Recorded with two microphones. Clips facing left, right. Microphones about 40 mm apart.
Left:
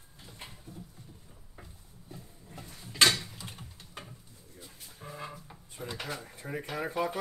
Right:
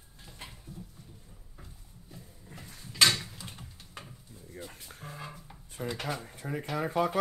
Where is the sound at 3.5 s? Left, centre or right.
Centre.